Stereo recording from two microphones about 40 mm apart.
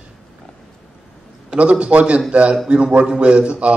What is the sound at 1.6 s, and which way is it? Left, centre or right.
A man's voice, right.